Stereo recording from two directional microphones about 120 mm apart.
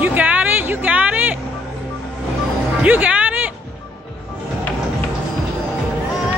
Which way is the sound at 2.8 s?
10° right (ahead or behind).